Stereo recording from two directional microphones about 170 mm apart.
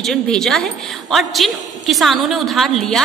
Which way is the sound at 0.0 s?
5° left (ahead or behind).